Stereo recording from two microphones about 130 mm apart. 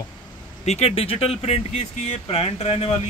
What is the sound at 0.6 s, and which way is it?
Speech, 55° left (ahead or behind).